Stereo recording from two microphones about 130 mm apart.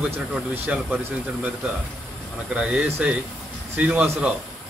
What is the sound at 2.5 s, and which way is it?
Speech, 10° right (ahead or behind).